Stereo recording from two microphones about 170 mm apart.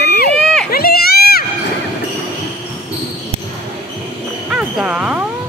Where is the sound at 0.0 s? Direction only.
70° left (ahead or behind).